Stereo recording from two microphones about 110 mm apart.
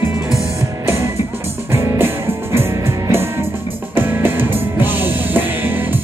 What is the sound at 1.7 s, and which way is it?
Music, 25° right (ahead or behind).